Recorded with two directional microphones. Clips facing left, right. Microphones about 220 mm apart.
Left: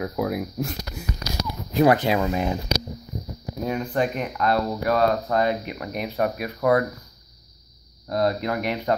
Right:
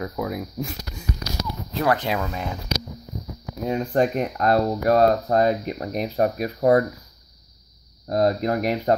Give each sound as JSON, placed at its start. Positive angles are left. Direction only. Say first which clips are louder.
{"t": 0.0, "sound": "speech", "louder": "left 2 dB", "side_deg": 5}
{"t": 3.6, "sound": "speech", "louder": "right 2 dB", "side_deg": -25}
{"t": 3.9, "sound": "speech", "louder": "right 3 dB", "side_deg": -40}
{"t": 8.1, "sound": "speech", "louder": "right 3 dB", "side_deg": -40}